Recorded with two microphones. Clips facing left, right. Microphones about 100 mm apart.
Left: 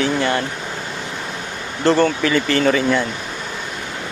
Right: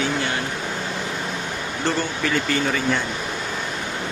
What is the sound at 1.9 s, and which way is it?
Speech, 85° left.